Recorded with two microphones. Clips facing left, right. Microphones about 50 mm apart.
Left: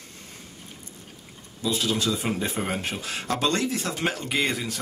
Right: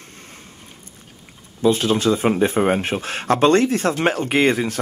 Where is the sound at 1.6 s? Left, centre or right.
Right.